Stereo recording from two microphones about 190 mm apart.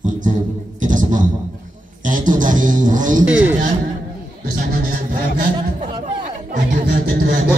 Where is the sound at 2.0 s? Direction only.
45° right (ahead or behind).